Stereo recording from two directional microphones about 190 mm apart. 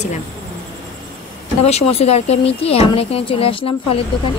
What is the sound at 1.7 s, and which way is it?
Speech, 35° left (ahead or behind).